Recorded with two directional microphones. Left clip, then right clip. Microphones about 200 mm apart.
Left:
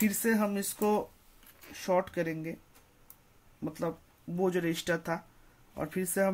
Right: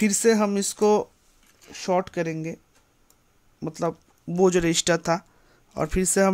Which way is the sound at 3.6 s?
45° right (ahead or behind).